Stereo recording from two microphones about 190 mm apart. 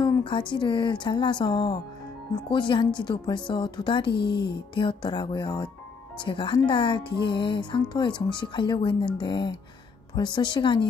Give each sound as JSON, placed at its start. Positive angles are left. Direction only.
{"t": 0.0, "sound": "speech", "side_deg": 25}